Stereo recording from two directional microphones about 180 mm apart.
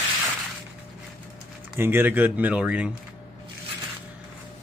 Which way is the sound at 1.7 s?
10° right (ahead or behind).